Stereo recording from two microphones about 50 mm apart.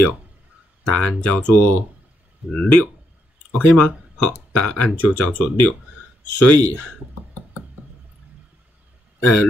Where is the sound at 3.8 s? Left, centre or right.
Left.